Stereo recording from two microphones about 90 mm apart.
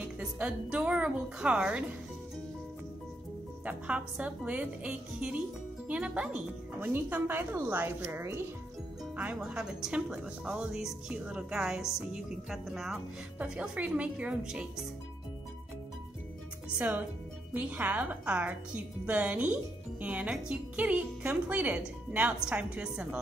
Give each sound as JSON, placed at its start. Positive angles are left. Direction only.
{"t": 0.2, "sound": "speech", "side_deg": -10}
{"t": 3.6, "sound": "a woman's voice", "side_deg": -15}
{"t": 9.1, "sound": "speech", "side_deg": -15}
{"t": 13.4, "sound": "speech", "side_deg": -15}
{"t": 16.6, "sound": "a woman's voice", "side_deg": -15}